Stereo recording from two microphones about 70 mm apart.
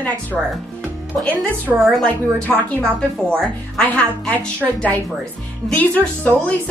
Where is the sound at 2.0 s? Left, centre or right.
Centre.